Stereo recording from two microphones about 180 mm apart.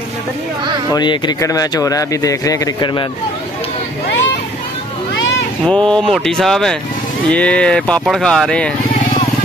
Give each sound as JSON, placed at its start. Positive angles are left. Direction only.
{"t": 0.9, "sound": "speech", "side_deg": 25}
{"t": 5.7, "sound": "speech", "side_deg": 5}